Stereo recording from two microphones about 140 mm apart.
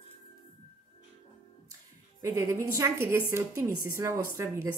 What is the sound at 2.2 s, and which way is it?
A woman's voice, 25° right (ahead or behind).